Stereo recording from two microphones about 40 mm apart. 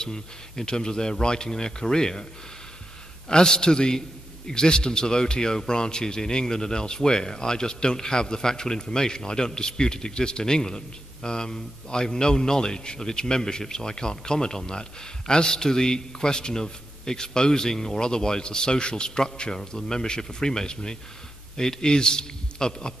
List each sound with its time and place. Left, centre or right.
0.0 s speech: centre
3.3 s a man's voice: centre